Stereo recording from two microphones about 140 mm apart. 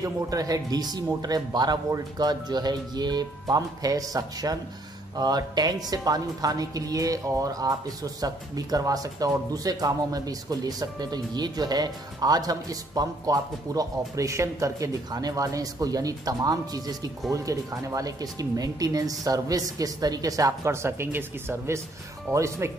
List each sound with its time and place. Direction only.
0.0 s a woman's voice: 25° right (ahead or behind)